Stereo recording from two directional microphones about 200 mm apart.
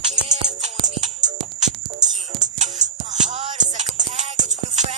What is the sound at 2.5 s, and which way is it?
Music, 35° right (ahead or behind).